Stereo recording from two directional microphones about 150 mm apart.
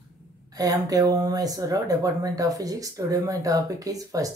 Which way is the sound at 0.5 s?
25° right (ahead or behind).